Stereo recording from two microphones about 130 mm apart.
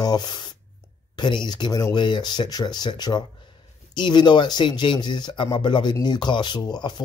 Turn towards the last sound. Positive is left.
turn(degrees=35)  # may be behind; listen again after turning